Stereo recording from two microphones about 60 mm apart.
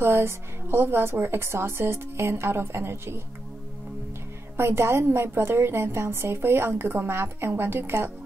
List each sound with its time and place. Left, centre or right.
0.0 s a woman's voice: right
4.6 s a woman's voice: right